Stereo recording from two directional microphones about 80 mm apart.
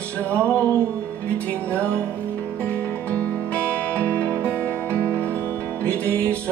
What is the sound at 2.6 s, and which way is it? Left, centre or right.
Music, centre.